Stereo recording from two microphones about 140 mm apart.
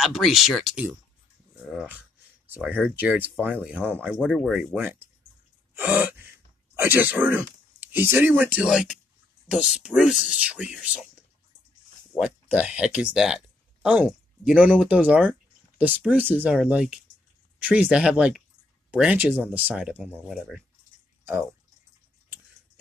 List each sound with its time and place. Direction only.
0.0 s speech: centre (ahead or behind)
1.6 s dog: 5° right (ahead or behind)
2.0 s speech: 10° right (ahead or behind)